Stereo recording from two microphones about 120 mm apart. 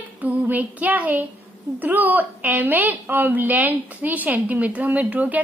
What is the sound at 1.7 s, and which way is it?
A woman's voice, 15° right (ahead or behind).